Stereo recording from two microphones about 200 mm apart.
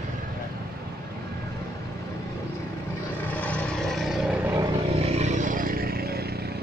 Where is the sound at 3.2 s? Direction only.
5° left (ahead or behind).